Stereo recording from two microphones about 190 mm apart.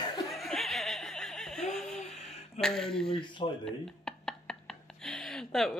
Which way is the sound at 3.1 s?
25° left (ahead or behind).